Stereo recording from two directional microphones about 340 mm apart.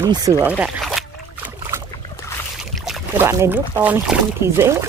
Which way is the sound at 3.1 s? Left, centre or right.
Centre.